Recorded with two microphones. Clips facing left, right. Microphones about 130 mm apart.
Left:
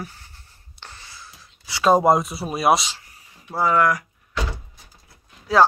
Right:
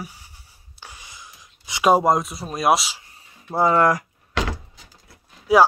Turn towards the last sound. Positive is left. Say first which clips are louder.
# right 2 dB
turn(degrees=-15)  # may be behind; listen again after turning